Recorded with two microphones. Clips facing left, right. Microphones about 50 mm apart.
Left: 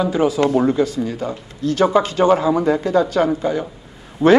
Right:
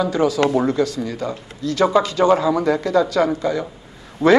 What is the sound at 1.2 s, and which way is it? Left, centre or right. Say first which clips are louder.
Speech: left 2 dB; left.